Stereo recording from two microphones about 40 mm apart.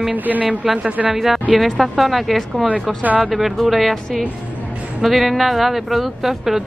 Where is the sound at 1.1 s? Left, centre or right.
Centre.